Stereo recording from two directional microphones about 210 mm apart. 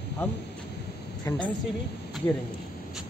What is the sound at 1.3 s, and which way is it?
Speech, 15° left (ahead or behind).